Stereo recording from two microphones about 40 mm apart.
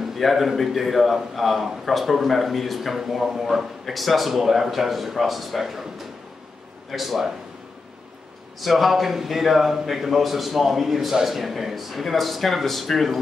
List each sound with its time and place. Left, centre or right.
0.2 s a man's voice: centre
8.5 s a man's voice: centre